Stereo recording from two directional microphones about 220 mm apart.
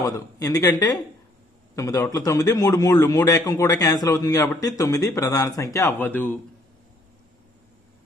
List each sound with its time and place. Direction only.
0.0 s a man's voice: 15° left (ahead or behind)